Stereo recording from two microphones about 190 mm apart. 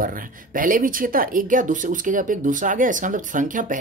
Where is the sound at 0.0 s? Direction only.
45° right (ahead or behind).